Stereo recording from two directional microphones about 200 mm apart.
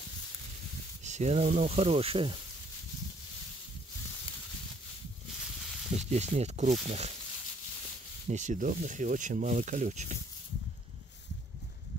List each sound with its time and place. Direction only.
1.0 s speech: 35° right (ahead or behind)
5.9 s speech: 35° right (ahead or behind)
8.3 s speech: 40° right (ahead or behind)